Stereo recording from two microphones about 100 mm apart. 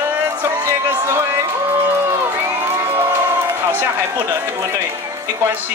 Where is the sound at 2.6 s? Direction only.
25° right (ahead or behind).